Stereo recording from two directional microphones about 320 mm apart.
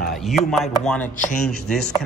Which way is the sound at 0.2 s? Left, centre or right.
Centre.